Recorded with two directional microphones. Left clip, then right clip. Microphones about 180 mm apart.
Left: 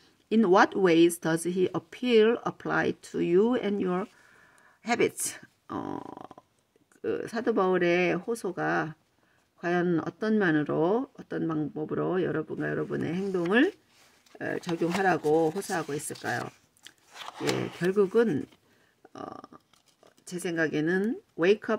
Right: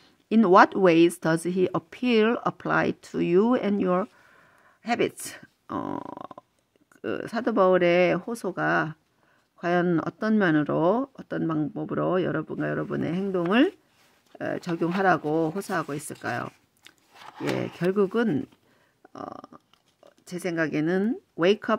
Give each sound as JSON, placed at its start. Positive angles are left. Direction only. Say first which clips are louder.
{"t": 0.3, "sound": "speech", "louder": "right 4 dB", "side_deg": -25}
{"t": 4.8, "sound": "speech", "louder": "even", "side_deg": -15}
{"t": 17.7, "sound": "speech", "louder": "left 1 dB", "side_deg": -25}